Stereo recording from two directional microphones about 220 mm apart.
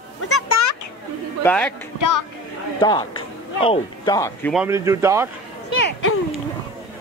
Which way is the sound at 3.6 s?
20° left (ahead or behind).